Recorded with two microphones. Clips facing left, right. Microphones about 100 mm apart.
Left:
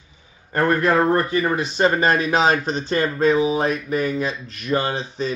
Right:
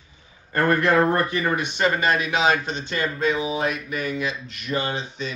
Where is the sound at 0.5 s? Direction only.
25° left (ahead or behind).